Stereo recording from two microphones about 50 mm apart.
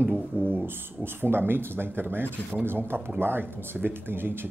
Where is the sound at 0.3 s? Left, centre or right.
Right.